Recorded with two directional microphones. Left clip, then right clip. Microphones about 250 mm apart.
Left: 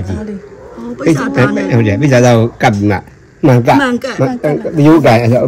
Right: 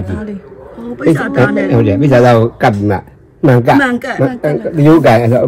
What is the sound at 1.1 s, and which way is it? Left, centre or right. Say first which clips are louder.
Speech: right 1 dB; centre.